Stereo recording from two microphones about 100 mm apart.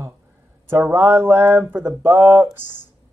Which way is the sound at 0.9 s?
25° right (ahead or behind).